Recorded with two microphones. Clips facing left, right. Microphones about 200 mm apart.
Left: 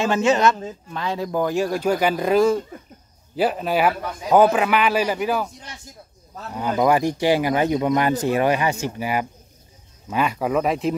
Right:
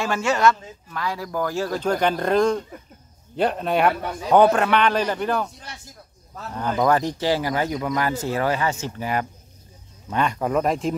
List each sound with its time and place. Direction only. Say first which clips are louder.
0.0 s a man's voice: left 2 dB; 20° left (ahead or behind)
6.5 s a man's voice: left 2 dB; 10° left (ahead or behind)